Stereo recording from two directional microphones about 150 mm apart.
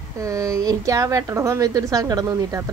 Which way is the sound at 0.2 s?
20° right (ahead or behind).